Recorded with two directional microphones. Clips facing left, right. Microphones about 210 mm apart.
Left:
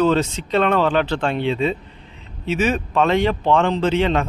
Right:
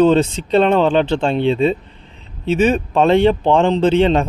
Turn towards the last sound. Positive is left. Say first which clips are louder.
# right 5 dB
turn(degrees=-30)  # may be behind; listen again after turning